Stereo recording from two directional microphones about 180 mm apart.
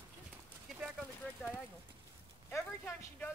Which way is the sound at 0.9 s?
5° left (ahead or behind).